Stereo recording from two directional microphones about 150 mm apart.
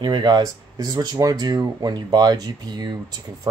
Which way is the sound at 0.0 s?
30° right (ahead or behind).